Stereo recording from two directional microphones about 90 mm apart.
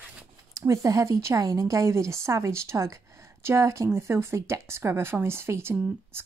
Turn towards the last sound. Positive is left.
turn(degrees=-30)  # may be behind; listen again after turning